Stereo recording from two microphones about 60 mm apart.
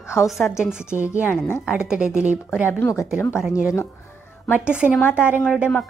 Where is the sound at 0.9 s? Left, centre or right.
Right.